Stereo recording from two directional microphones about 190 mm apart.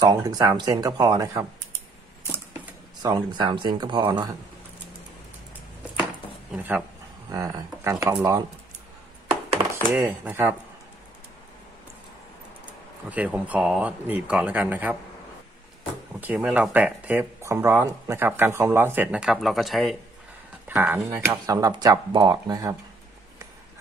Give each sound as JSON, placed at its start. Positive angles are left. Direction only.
{"t": 0.0, "sound": "speech", "side_deg": -20}
{"t": 3.0, "sound": "speech", "side_deg": -20}
{"t": 6.5, "sound": "speech", "side_deg": -10}
{"t": 9.9, "sound": "speech", "side_deg": -10}
{"t": 13.1, "sound": "speech", "side_deg": -10}
{"t": 16.2, "sound": "speech", "side_deg": -10}
{"t": 20.6, "sound": "speech", "side_deg": -10}